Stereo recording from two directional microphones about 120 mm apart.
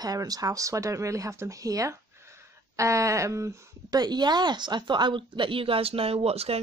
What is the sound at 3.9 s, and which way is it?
Speech, 35° right (ahead or behind).